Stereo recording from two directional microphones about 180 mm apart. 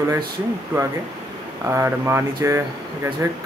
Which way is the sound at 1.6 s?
15° right (ahead or behind).